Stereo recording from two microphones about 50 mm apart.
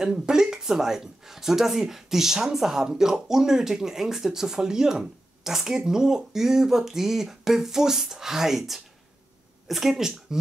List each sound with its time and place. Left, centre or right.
0.0 s speech: centre